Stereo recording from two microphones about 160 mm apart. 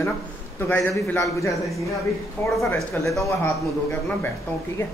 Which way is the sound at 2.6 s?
20° left (ahead or behind).